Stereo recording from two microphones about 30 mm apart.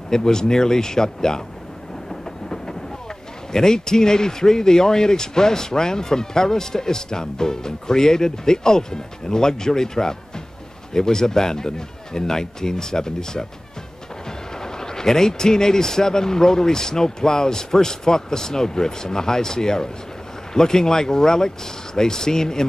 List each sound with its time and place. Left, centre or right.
0.1 s speech: left
3.5 s speech: centre
14.6 s speech: left